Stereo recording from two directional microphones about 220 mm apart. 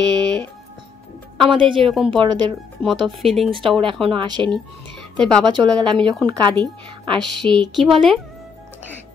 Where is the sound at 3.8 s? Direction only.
25° right (ahead or behind).